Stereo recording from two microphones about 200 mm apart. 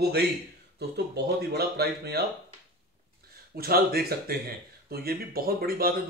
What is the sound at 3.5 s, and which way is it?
Speech, 50° right (ahead or behind).